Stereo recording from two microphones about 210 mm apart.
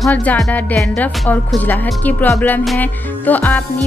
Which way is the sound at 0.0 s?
5° left (ahead or behind).